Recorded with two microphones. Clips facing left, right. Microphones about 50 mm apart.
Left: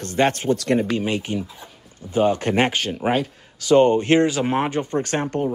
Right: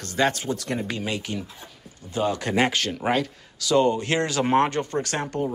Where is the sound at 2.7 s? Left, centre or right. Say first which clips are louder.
Left 2 dB; centre.